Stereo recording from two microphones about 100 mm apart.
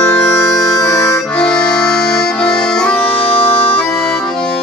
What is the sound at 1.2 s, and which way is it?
Accordion, 10° left (ahead or behind).